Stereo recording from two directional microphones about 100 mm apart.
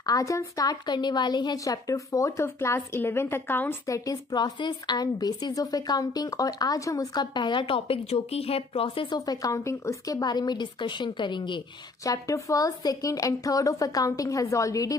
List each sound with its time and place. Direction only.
0.0 s a woman's voice: 35° left (ahead or behind)
3.8 s a woman's voice: 35° left (ahead or behind)
7.3 s speech: 50° left (ahead or behind)
12.0 s a woman's voice: 35° left (ahead or behind)